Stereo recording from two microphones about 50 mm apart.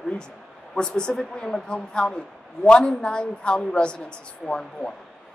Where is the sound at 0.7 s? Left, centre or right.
Centre.